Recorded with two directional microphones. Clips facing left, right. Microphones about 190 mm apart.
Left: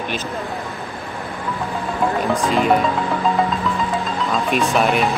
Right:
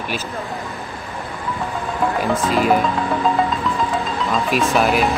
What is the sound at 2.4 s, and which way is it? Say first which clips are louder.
Speech: even; 5° right (ahead or behind).